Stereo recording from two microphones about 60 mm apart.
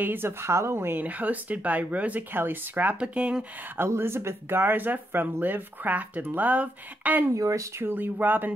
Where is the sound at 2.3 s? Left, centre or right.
Right.